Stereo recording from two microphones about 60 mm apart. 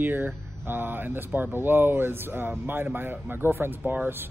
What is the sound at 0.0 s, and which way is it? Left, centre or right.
Speech, right.